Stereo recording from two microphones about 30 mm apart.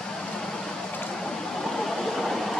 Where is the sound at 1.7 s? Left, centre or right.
Centre.